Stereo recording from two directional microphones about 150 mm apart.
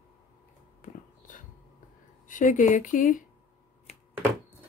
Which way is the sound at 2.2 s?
60° left (ahead or behind).